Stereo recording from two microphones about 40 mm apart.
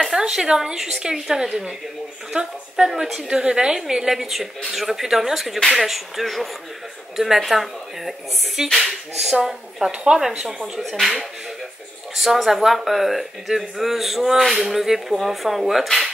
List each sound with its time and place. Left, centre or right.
0.0 s a woman's voice: centre
2.3 s speech: right
2.7 s a woman's voice: centre
9.8 s speech: right
10.9 s speech: centre
12.2 s speech: centre